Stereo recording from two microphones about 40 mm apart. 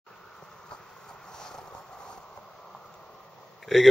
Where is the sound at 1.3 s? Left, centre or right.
Centre.